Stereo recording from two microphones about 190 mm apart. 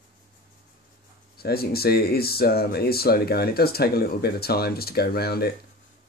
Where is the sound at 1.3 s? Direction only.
55° left (ahead or behind).